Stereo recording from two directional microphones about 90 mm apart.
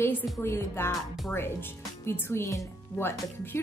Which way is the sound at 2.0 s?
30° left (ahead or behind).